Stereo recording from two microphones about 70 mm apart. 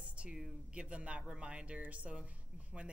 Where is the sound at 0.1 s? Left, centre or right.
Centre.